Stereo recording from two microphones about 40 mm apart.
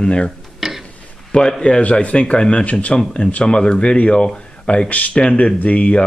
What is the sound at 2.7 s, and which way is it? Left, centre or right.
Speech, left.